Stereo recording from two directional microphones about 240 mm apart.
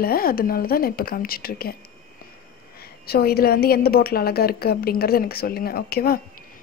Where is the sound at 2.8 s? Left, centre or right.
Left.